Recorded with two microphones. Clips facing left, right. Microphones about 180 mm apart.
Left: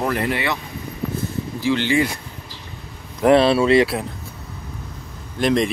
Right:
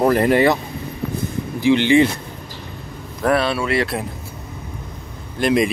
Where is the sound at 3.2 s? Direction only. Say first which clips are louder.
Left 5 dB; 25° left (ahead or behind).